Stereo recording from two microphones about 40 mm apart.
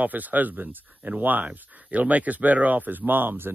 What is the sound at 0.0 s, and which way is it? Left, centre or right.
Speech, right.